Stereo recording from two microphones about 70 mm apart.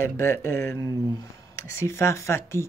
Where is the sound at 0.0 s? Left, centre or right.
Left.